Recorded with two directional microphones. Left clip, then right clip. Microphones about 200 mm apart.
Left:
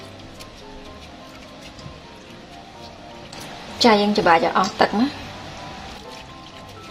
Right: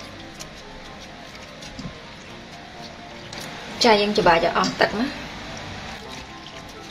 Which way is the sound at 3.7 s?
25° left (ahead or behind).